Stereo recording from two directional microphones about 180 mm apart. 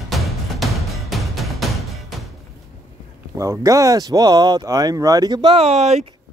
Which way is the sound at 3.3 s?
20° right (ahead or behind).